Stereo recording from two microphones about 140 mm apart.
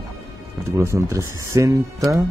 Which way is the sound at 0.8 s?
20° right (ahead or behind).